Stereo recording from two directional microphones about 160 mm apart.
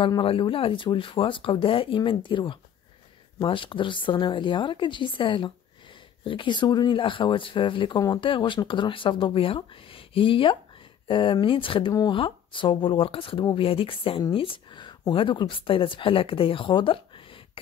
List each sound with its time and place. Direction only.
0.0 s speech: 35° left (ahead or behind)